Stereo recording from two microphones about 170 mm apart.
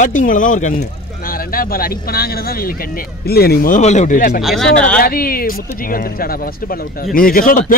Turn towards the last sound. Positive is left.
turn(degrees=55)  # may be behind; listen again after turning